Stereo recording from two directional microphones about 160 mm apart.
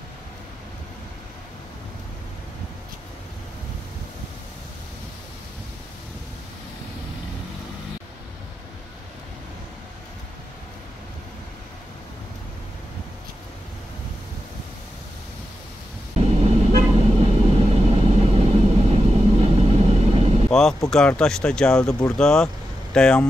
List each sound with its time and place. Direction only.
16.2 s vehicle: 40° right (ahead or behind)
20.4 s speech: 5° left (ahead or behind)